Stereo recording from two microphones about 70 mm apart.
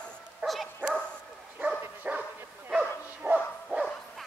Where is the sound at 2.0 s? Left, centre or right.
Right.